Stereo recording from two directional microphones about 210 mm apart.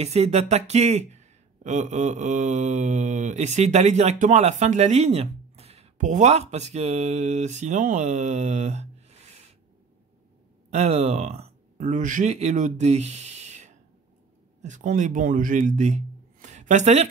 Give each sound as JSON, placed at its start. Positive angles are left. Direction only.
{"t": 0.0, "sound": "speech", "side_deg": -30}
{"t": 10.7, "sound": "a man's voice", "side_deg": -30}